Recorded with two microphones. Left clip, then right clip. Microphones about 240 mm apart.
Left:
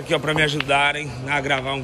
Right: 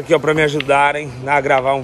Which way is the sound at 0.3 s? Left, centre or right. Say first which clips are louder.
Right 5 dB; right.